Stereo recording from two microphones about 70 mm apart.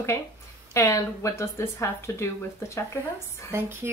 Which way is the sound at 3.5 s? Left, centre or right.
Right.